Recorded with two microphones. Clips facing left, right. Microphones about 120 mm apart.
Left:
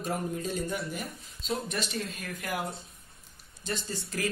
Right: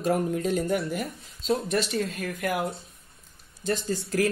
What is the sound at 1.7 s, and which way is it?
Speech, 55° right (ahead or behind).